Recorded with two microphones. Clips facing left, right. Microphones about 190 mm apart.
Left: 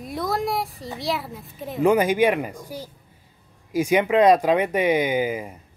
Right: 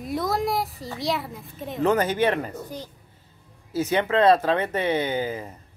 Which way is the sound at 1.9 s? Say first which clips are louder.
Left 3 dB; 10° left (ahead or behind).